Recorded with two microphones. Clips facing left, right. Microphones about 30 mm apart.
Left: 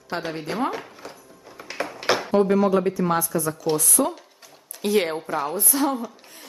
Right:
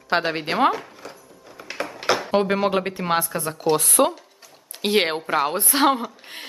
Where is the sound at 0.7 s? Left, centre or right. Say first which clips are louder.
Right 1 dB; centre.